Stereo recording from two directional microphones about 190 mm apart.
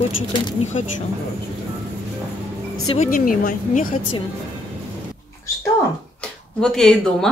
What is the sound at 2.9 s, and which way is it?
Speech, 40° left (ahead or behind).